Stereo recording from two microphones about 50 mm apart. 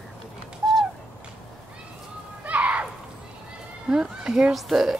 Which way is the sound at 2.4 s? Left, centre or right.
Right.